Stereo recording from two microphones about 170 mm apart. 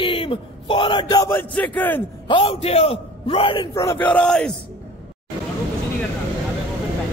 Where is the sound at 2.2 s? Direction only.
30° left (ahead or behind).